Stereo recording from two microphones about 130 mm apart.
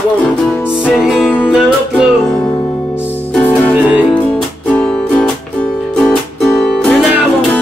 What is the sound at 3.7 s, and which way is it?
Music, 10° right (ahead or behind).